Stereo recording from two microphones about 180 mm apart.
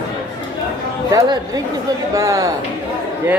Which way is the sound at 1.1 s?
20° right (ahead or behind).